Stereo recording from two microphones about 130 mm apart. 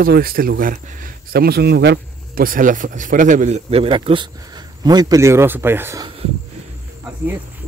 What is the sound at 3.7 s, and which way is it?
Speech, 50° right (ahead or behind).